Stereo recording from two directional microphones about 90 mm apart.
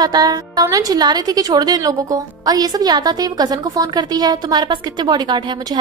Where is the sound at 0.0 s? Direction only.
45° right (ahead or behind).